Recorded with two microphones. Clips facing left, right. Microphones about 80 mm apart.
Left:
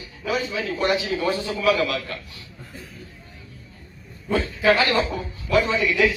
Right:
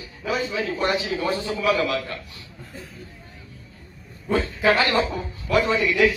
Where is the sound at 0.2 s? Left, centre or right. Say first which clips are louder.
Even; right.